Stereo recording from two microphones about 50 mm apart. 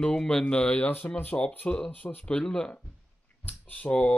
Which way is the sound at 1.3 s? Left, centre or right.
Left.